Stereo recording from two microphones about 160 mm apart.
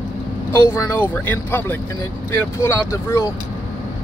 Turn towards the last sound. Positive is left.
turn(degrees=20)  # may be behind; listen again after turning